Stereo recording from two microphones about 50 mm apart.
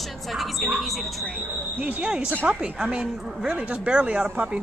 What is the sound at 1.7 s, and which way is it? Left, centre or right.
Speech, right.